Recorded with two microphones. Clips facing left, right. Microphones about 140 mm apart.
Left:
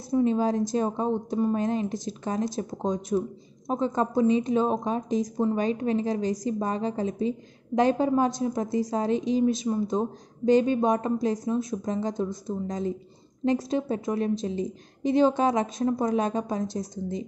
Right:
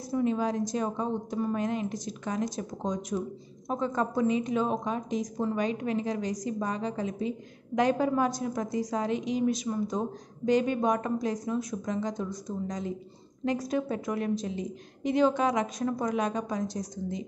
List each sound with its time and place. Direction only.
0.1 s a woman's voice: 30° left (ahead or behind)